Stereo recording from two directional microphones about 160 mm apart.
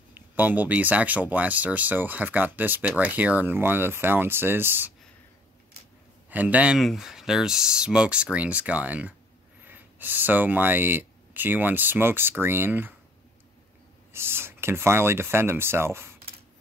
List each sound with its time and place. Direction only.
0.1 s speech: 10° right (ahead or behind)
6.3 s speech: 10° right (ahead or behind)
14.1 s speech: 15° right (ahead or behind)